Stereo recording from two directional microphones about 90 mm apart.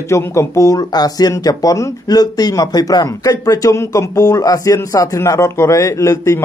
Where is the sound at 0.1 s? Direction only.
30° left (ahead or behind).